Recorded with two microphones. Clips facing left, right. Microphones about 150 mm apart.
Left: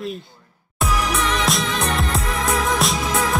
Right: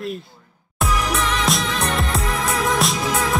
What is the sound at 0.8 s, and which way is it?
Music, centre (ahead or behind).